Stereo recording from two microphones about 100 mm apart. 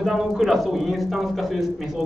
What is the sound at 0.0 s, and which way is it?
A man's voice, 5° right (ahead or behind).